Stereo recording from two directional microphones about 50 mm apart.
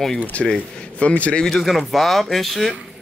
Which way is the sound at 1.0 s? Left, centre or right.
Left.